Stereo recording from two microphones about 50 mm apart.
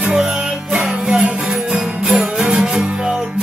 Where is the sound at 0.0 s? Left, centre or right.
Centre.